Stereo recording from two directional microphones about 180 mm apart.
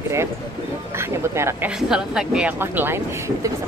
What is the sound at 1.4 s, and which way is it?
Speech, 15° right (ahead or behind).